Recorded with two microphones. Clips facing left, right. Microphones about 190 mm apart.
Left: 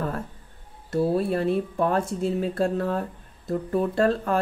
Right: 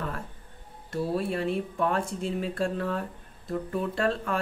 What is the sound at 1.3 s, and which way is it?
Speech, 40° left (ahead or behind).